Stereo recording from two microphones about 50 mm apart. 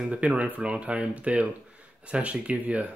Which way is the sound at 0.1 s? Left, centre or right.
Right.